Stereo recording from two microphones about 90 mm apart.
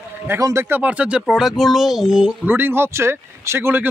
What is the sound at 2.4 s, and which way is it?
Speech, 25° right (ahead or behind).